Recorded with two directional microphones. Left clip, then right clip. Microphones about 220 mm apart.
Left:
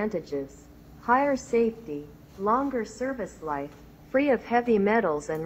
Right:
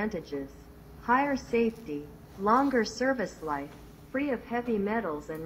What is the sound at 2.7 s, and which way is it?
Speech, 20° right (ahead or behind).